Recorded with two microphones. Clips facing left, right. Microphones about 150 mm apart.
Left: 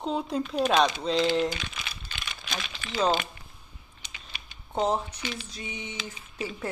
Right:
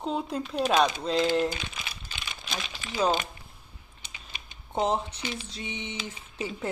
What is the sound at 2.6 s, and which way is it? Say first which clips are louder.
Speech: even; 15° right (ahead or behind).